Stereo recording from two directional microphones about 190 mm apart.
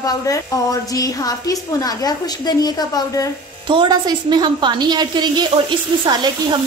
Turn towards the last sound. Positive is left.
turn(degrees=-25)  # may be behind; listen again after turning